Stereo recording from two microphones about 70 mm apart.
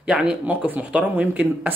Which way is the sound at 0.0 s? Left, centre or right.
Centre.